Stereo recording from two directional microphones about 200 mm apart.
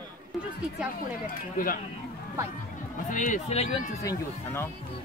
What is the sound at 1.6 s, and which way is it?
Speech, 45° left (ahead or behind).